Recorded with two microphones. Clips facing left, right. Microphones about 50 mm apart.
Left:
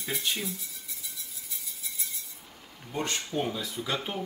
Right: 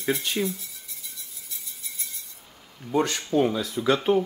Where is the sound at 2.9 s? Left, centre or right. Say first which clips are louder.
Right 8 dB; right.